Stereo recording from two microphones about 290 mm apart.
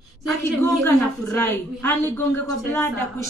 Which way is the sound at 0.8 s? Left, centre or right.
Centre.